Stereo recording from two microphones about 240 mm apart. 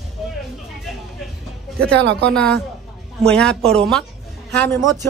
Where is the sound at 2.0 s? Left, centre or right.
Right.